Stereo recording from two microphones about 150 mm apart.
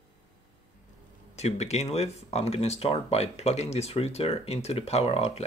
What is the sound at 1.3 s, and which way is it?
Speech, 45° left (ahead or behind).